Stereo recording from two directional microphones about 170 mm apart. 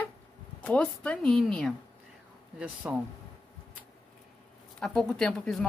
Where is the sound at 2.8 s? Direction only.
5° right (ahead or behind).